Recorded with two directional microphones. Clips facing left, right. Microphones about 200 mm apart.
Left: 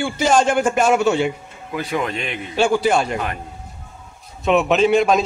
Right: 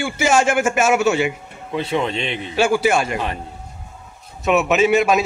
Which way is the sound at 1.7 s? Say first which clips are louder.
Right 2 dB; 25° right (ahead or behind).